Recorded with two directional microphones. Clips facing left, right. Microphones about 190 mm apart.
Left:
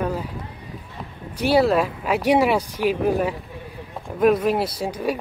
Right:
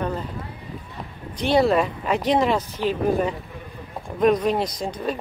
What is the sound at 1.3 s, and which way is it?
Speech, 10° left (ahead or behind).